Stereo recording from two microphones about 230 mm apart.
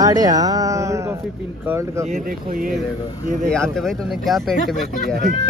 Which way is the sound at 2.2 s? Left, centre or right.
Right.